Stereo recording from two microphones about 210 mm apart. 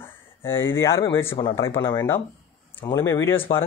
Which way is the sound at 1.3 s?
25° left (ahead or behind).